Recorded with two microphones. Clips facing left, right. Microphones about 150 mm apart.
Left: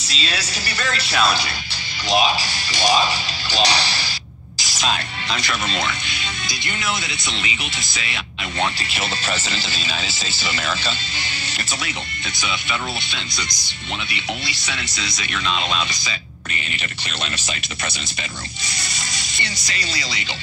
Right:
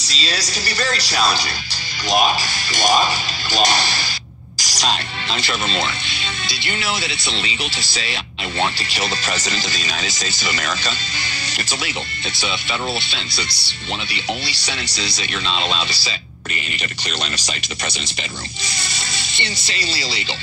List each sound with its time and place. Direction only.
0.1 s speech: 35° right (ahead or behind)
2.0 s speech: 45° right (ahead or behind)
4.6 s music: 40° right (ahead or behind)
5.3 s speech: 30° right (ahead or behind)
13.1 s speech: 30° right (ahead or behind)
18.8 s speech: 30° right (ahead or behind)